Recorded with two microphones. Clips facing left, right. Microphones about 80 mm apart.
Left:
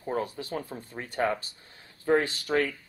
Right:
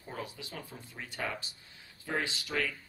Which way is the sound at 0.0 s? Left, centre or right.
Left.